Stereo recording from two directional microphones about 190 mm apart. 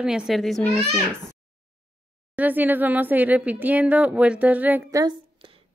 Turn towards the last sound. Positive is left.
turn(degrees=-15)  # may be behind; listen again after turning